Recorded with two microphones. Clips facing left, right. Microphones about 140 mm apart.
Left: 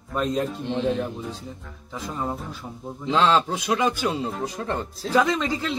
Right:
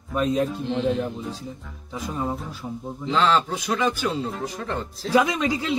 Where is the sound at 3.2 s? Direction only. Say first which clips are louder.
Left 1 dB; 25° left (ahead or behind).